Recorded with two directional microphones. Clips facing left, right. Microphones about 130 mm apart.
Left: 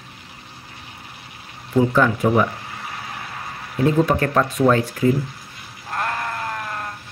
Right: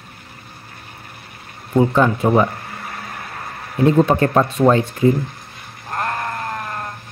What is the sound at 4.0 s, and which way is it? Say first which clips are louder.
Speech: right 3 dB; 25° right (ahead or behind).